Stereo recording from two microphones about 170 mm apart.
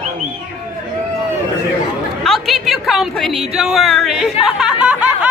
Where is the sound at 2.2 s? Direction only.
Centre (ahead or behind).